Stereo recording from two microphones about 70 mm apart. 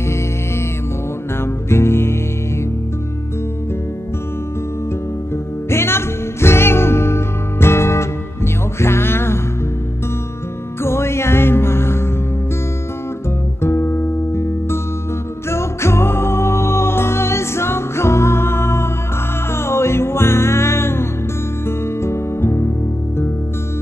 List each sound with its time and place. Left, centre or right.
1.4 s music: left
5.7 s music: left
10.8 s music: left
13.6 s music: left